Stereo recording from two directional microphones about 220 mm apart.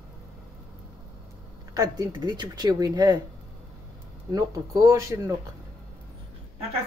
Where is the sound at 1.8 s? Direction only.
20° right (ahead or behind).